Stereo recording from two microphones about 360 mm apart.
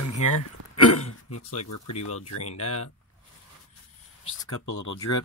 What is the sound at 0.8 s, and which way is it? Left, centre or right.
Speech, left.